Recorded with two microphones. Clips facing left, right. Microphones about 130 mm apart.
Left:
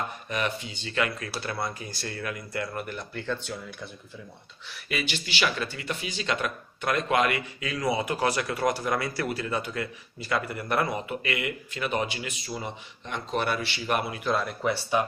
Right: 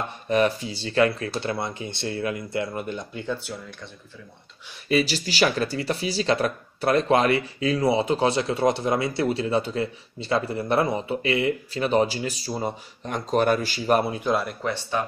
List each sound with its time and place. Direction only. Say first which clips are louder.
0.3 s speech: right 11 dB; 35° right (ahead or behind); by 3.5 s 15° right (ahead or behind)
4.8 s speech: right 9 dB; 35° right (ahead or behind)
14.6 s speech: left 1 dB; 10° left (ahead or behind)